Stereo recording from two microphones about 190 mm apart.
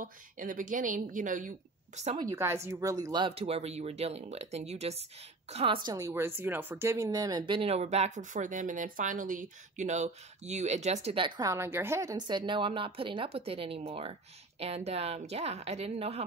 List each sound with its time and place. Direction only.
0.0 s a woman's voice: 45° right (ahead or behind)
2.1 s speech: 15° right (ahead or behind); by 5.8 s 30° right (ahead or behind)
5.9 s speech: 15° right (ahead or behind); by 16.3 s 35° right (ahead or behind)